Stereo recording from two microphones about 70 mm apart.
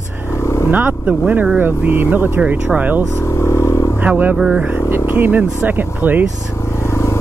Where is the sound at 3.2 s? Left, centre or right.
Left.